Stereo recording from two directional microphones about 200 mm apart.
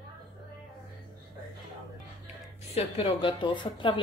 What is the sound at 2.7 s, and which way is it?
Speech, 30° left (ahead or behind).